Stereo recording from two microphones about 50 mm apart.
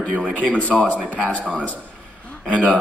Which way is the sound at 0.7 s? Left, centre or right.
Centre.